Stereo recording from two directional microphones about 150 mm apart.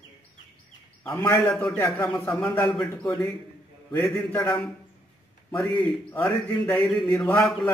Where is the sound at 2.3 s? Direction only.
Centre (ahead or behind).